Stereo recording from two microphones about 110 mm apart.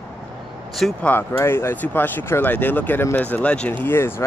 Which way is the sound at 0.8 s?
5° left (ahead or behind).